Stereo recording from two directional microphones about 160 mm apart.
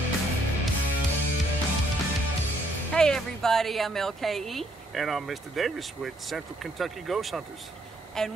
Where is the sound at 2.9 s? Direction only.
5° left (ahead or behind).